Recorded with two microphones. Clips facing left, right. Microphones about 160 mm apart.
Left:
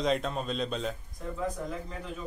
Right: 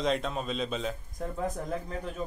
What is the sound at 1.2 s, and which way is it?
Speech, 50° right (ahead or behind).